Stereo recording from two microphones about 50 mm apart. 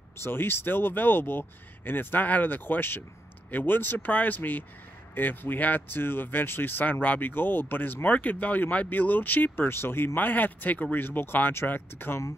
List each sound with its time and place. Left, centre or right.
0.2 s speech: left